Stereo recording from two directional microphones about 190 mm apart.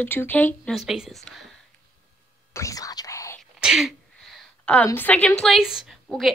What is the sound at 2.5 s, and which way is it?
Whispering, 15° left (ahead or behind).